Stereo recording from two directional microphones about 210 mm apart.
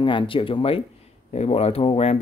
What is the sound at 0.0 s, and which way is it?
Speech, 25° left (ahead or behind).